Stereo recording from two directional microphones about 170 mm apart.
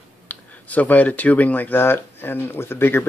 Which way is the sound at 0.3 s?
10° left (ahead or behind).